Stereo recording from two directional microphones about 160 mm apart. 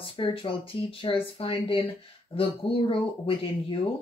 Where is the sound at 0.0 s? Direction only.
35° left (ahead or behind).